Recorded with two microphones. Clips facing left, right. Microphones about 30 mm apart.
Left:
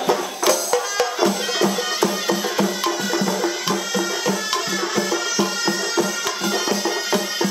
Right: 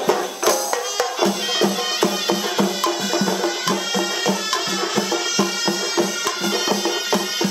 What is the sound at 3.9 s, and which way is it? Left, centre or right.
Music, centre.